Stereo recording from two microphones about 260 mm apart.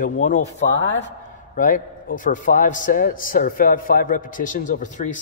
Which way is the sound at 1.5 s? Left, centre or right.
Left.